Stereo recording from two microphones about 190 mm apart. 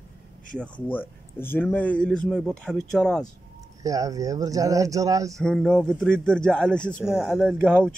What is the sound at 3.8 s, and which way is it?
Speech, 20° right (ahead or behind).